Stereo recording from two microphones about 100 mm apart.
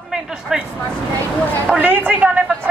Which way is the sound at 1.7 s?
20° right (ahead or behind).